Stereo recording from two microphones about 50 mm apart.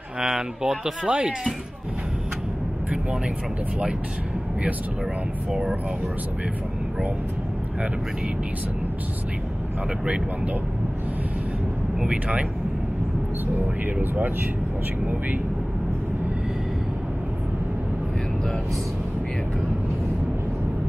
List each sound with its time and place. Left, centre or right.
0.2 s speech: centre
12.0 s speech: centre
13.8 s speech: right